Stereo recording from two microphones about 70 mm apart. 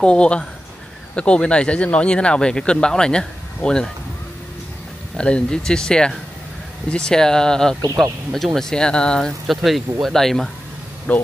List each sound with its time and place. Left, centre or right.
0.0 s speech: centre
5.1 s speech: centre
9.5 s speech: centre
11.1 s speech: centre